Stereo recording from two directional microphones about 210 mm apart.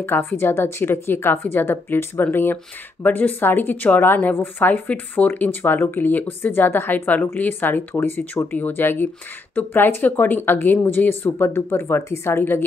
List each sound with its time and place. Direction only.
0.0 s a woman's voice: 10° left (ahead or behind)